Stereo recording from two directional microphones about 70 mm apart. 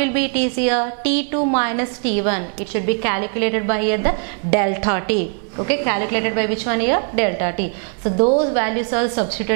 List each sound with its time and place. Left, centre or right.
0.0 s a woman's voice: centre